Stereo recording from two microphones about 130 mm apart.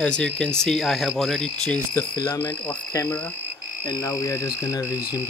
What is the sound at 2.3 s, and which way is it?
Speech, 10° left (ahead or behind).